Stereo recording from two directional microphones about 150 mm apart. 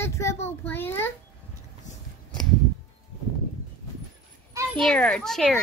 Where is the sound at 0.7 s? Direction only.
15° left (ahead or behind).